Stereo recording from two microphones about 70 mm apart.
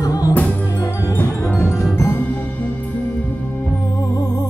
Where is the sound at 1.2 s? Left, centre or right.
Left.